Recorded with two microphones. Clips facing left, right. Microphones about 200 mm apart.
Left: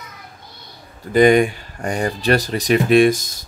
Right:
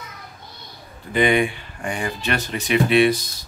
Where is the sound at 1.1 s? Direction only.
45° left (ahead or behind).